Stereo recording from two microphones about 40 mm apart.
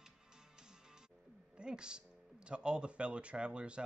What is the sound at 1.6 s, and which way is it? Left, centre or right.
A man's voice, right.